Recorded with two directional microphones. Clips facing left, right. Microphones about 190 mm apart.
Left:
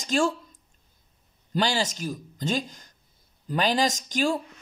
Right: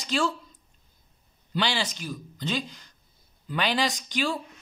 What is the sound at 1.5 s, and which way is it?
Speech, 45° left (ahead or behind).